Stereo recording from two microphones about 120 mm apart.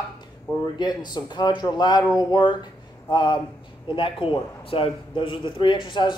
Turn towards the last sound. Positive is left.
turn(degrees=40)  # may be behind; listen again after turning